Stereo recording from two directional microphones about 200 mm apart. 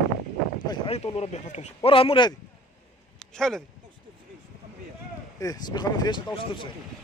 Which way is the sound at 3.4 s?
5° left (ahead or behind).